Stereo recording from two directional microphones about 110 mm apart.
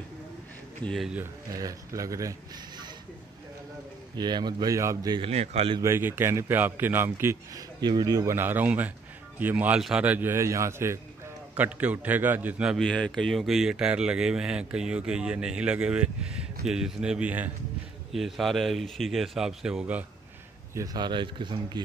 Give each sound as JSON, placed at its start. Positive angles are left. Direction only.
{"t": 0.8, "sound": "speech", "side_deg": 0}
{"t": 1.5, "sound": "speech", "side_deg": -30}
{"t": 4.2, "sound": "speech", "side_deg": -40}
{"t": 5.3, "sound": "a man's voice", "side_deg": -75}
{"t": 5.8, "sound": "a man's voice", "side_deg": -20}
{"t": 7.5, "sound": "speech", "side_deg": -40}
{"t": 8.4, "sound": "speech", "side_deg": -15}
{"t": 9.8, "sound": "speech", "side_deg": -5}
{"t": 10.0, "sound": "speech", "side_deg": -15}
{"t": 10.3, "sound": "a man's voice", "side_deg": -25}
{"t": 11.5, "sound": "speech", "side_deg": -15}
{"t": 12.7, "sound": "speech", "side_deg": 5}
{"t": 18.1, "sound": "speech", "side_deg": 0}
{"t": 20.7, "sound": "speech", "side_deg": -35}